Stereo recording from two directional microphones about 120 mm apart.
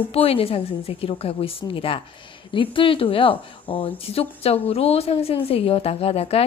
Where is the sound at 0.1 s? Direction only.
55° left (ahead or behind).